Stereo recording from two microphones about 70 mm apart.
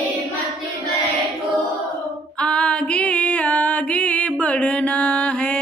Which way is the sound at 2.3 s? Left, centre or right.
Centre.